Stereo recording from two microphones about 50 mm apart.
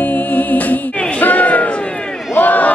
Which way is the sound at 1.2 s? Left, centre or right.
Left.